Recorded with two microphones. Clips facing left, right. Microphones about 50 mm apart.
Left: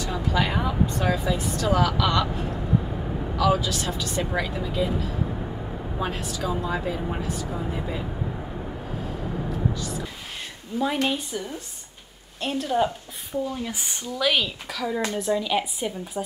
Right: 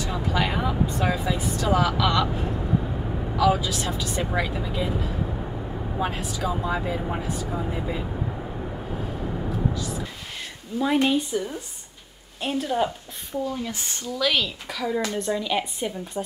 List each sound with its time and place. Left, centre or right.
0.1 s speech: centre
3.3 s speech: centre
5.9 s speech: centre
10.7 s a woman's voice: left
11.1 s speech: centre
13.5 s speech: centre
14.7 s speech: centre